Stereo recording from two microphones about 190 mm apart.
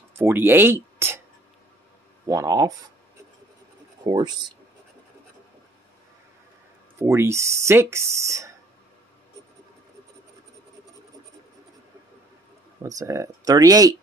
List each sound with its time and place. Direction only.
0.2 s speech: 10° right (ahead or behind)
2.2 s speech: 15° right (ahead or behind)
4.0 s speech: 25° right (ahead or behind)
7.0 s speech: 15° right (ahead or behind)
12.8 s speech: 15° right (ahead or behind)